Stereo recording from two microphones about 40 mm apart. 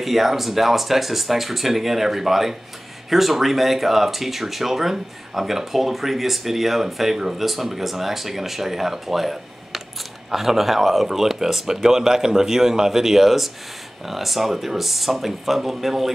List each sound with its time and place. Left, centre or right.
0.0 s speech: centre